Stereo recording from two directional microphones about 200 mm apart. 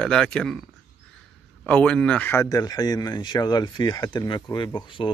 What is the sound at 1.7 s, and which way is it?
Speech, 5° left (ahead or behind).